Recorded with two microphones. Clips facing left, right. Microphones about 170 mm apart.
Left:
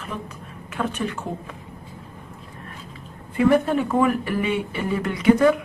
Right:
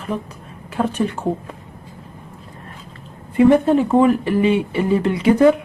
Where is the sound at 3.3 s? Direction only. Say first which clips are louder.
Right 6 dB; 25° right (ahead or behind).